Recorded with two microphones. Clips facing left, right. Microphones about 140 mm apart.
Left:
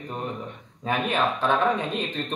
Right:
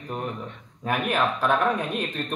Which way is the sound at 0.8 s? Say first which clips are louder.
Even; 5° right (ahead or behind).